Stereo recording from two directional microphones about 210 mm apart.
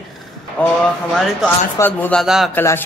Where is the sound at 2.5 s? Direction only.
10° left (ahead or behind).